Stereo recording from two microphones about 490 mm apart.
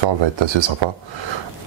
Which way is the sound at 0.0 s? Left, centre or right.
Right.